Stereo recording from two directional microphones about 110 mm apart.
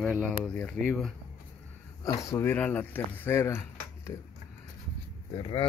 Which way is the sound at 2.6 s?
15° left (ahead or behind).